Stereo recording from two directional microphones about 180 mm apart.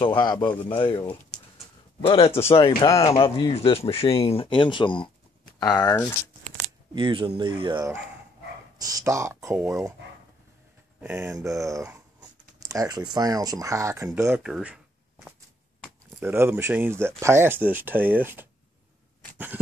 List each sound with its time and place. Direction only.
0.0 s a man's voice: 25° left (ahead or behind)
1.3 s a sound: 5° left (ahead or behind)
2.0 s speech: 30° left (ahead or behind)
2.8 s speech: 15° left (ahead or behind)
3.1 s speech: 30° left (ahead or behind)
7.0 s speech: 25° right (ahead or behind)
11.0 s speech: 10° right (ahead or behind)
19.3 s a sound: 10° right (ahead or behind)